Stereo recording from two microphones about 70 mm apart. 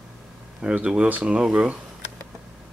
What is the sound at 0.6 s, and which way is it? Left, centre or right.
Speech, centre.